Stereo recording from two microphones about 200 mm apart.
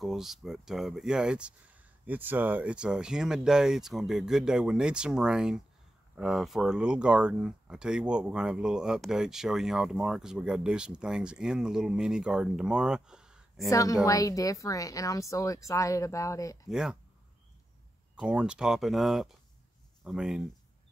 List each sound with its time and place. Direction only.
0.0 s speech: centre (ahead or behind)
13.7 s speech: 15° left (ahead or behind)
16.6 s speech: centre (ahead or behind)
18.1 s speech: 5° right (ahead or behind)